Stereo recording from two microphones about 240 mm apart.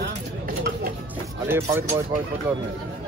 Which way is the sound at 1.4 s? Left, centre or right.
Centre.